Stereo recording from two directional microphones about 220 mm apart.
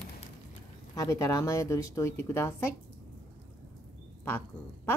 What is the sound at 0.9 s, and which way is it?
Speech, 15° left (ahead or behind).